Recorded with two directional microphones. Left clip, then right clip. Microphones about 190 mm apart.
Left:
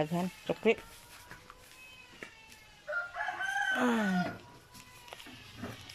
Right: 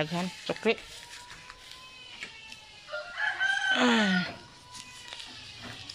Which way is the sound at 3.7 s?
10° left (ahead or behind).